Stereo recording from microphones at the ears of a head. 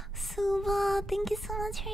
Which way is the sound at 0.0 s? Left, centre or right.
Centre.